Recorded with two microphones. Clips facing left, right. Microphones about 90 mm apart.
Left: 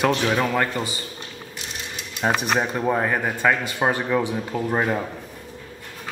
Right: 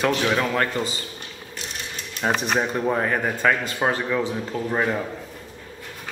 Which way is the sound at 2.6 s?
5° left (ahead or behind).